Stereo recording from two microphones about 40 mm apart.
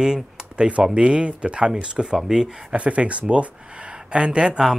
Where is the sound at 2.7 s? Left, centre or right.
Right.